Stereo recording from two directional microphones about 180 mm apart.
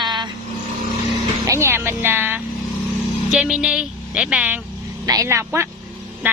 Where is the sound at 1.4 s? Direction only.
15° right (ahead or behind).